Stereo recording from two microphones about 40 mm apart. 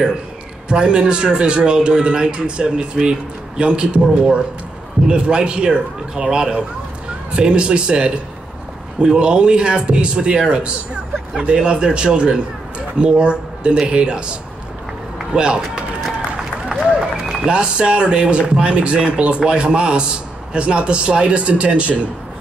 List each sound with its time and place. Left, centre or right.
0.7 s a man's voice: right
15.3 s a man's voice: right
16.3 s a sound: centre
17.5 s a man's voice: right